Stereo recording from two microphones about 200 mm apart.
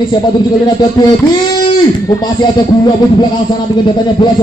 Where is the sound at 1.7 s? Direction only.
20° left (ahead or behind).